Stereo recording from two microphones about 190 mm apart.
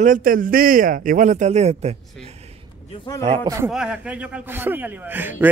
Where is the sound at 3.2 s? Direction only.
20° right (ahead or behind).